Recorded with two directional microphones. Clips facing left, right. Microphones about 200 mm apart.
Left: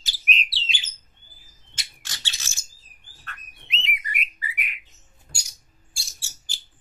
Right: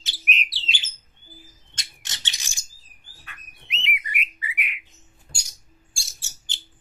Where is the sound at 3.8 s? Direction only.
40° left (ahead or behind).